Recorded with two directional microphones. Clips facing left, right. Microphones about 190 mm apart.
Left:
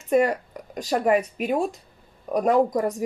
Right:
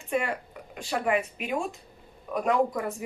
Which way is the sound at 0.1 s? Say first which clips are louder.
Left 9 dB; 40° left (ahead or behind).